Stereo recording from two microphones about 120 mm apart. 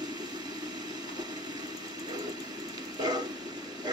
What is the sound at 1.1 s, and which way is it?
Vehicle, 35° right (ahead or behind).